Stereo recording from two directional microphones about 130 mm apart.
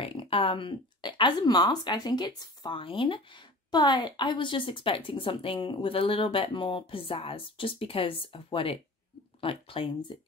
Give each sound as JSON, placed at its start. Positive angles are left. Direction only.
{"t": 0.0, "sound": "speech", "side_deg": 45}